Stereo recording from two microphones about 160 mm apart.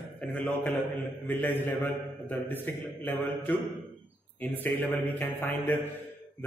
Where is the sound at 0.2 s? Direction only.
10° left (ahead or behind).